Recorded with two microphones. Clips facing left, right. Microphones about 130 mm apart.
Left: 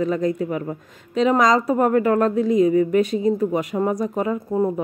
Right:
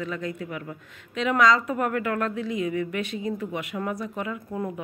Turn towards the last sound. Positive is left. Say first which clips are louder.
# left 10 dB
turn(degrees=35)  # may be behind; listen again after turning